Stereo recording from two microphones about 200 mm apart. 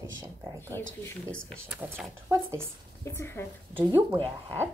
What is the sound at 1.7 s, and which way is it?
Speech, 10° right (ahead or behind).